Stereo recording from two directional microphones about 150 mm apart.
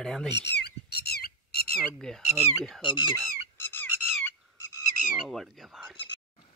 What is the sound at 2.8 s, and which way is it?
Speech, 30° left (ahead or behind).